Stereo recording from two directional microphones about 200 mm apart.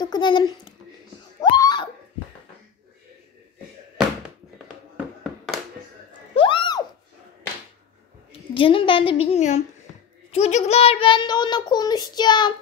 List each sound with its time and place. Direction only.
0.0 s a child's voice: 20° left (ahead or behind)
1.4 s laughter: 20° left (ahead or behind)
4.9 s fireworks: centre (ahead or behind)
6.3 s a sound: 25° left (ahead or behind)
8.3 s a woman's voice: 25° left (ahead or behind)